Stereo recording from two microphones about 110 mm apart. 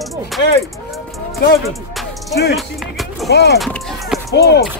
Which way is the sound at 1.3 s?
Centre (ahead or behind).